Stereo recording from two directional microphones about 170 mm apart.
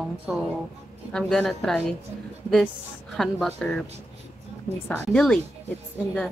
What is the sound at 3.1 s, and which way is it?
Speech, centre (ahead or behind).